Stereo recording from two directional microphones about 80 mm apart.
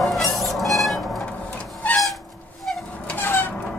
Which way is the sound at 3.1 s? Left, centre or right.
Left.